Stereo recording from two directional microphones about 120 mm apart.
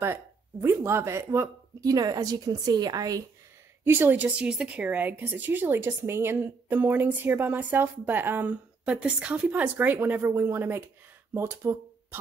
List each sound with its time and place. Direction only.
0.0 s speech: 20° right (ahead or behind)
3.8 s speech: 20° right (ahead or behind)